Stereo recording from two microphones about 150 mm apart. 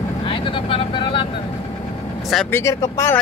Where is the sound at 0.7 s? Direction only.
35° left (ahead or behind).